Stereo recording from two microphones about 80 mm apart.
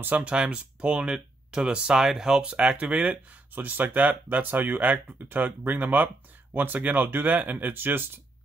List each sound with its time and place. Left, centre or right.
0.0 s speech: centre